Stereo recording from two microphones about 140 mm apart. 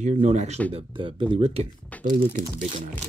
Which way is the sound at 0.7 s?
40° right (ahead or behind).